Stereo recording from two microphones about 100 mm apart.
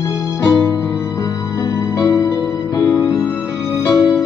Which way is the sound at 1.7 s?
40° left (ahead or behind).